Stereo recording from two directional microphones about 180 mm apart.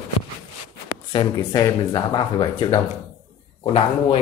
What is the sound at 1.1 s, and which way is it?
Speech, 25° left (ahead or behind).